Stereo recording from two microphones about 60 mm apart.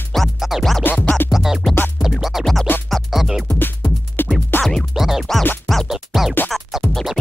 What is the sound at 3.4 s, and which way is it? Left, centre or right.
Music, left.